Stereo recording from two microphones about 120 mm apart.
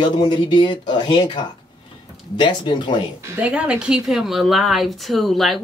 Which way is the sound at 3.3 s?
10° right (ahead or behind).